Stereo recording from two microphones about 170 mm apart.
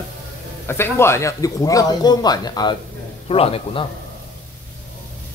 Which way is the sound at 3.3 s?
35° left (ahead or behind).